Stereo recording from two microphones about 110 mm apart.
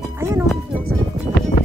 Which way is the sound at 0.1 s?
25° right (ahead or behind).